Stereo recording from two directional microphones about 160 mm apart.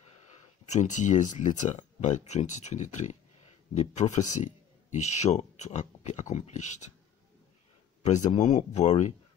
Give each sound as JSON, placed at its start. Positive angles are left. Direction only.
{"t": 0.7, "sound": "speech", "side_deg": 50}
{"t": 8.0, "sound": "speech", "side_deg": 45}